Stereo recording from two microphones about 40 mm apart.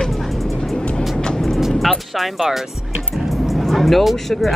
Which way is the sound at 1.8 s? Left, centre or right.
Centre.